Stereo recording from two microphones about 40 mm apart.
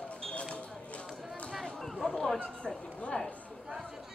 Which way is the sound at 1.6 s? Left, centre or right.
Centre.